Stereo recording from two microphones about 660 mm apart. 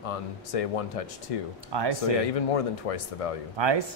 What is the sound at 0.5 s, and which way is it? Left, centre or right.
Speech, left.